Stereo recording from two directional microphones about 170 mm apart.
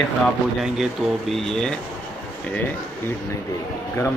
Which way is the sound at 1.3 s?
Centre (ahead or behind).